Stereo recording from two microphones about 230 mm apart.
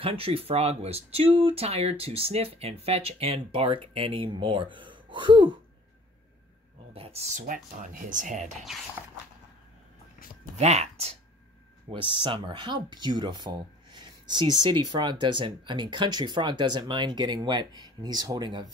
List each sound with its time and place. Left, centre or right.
0.0 s speech: right
6.9 s speech: right
10.6 s speech: right